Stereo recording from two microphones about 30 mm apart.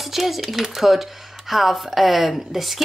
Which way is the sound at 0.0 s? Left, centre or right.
Centre.